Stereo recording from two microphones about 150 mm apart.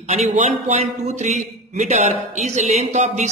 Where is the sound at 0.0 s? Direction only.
50° right (ahead or behind).